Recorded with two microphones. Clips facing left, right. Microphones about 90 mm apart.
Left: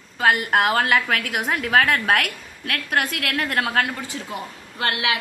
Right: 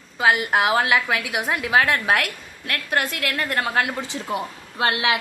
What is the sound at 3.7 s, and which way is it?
A woman's voice, 15° right (ahead or behind).